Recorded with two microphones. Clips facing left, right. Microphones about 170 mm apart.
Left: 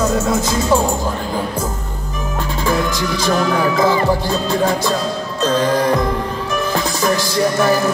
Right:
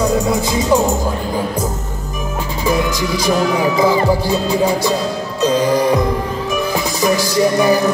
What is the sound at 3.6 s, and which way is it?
Speech, 10° right (ahead or behind).